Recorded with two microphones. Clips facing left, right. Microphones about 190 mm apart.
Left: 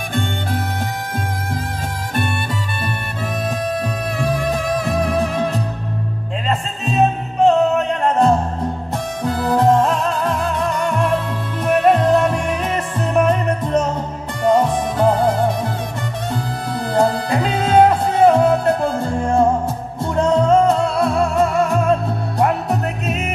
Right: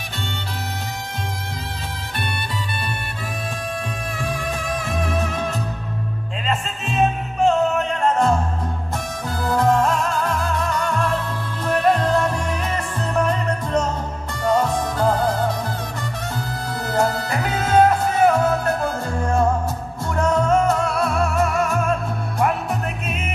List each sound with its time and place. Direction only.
4.2 s music: 35° left (ahead or behind)
7.3 s music: 20° left (ahead or behind)
16.9 s music: 25° left (ahead or behind)
22.4 s music: 40° left (ahead or behind)